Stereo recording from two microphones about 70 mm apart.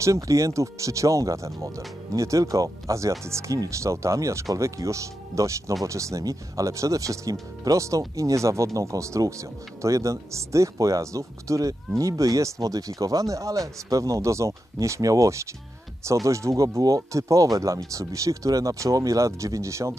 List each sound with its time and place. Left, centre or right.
0.0 s speech: right